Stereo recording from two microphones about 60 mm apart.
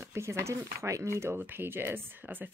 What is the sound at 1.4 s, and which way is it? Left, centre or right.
Speech, right.